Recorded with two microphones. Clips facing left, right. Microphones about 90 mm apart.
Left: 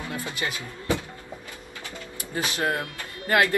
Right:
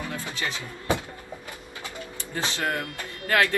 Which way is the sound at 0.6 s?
20° right (ahead or behind).